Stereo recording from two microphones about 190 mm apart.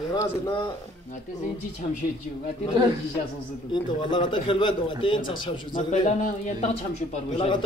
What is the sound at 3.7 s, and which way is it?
A man's voice, 25° left (ahead or behind).